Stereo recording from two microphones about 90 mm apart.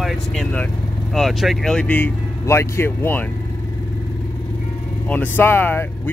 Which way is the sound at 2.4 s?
30° left (ahead or behind).